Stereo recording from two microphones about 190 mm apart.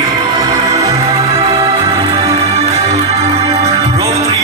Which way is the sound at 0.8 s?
35° right (ahead or behind).